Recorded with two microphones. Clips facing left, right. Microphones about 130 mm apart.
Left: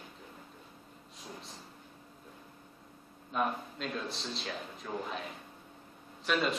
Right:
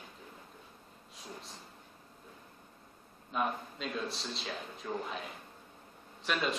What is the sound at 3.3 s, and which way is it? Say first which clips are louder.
A man's voice: left 1 dB; centre (ahead or behind).